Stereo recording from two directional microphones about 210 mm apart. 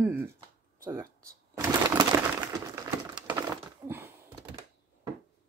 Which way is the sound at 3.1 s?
10° right (ahead or behind).